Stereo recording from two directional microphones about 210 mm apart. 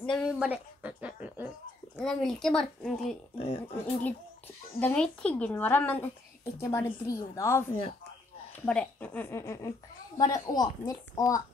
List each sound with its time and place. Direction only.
0.0 s a sound: centre (ahead or behind)
2.0 s speech: 5° left (ahead or behind)
3.3 s speech: 25° left (ahead or behind)
4.7 s speech: 5° left (ahead or behind)